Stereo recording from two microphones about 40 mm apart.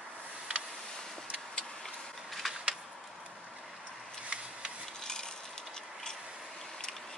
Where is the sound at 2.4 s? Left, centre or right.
Centre.